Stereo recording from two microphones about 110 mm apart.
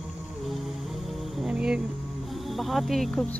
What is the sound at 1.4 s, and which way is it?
Music, 10° right (ahead or behind).